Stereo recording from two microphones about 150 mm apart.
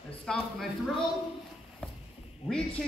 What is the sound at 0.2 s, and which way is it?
Speech, 5° left (ahead or behind).